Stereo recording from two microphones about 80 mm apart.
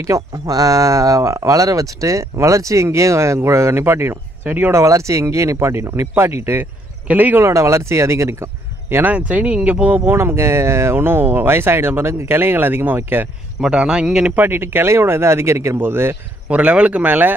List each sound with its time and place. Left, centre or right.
0.0 s speech: right
4.7 s speech: right
7.1 s speech: centre
7.4 s speech: right; by 10.1 s centre
10.1 s speech: right
13.6 s speech: centre
14.3 s speech: right
16.4 s speech: centre